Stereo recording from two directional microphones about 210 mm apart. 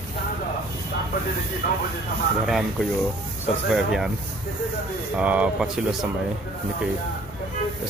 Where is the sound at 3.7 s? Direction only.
Centre (ahead or behind).